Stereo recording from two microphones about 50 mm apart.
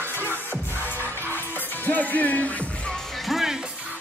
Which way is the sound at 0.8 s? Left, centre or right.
Left.